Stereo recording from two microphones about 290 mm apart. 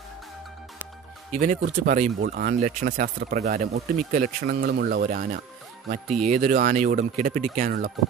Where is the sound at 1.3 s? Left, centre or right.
Right.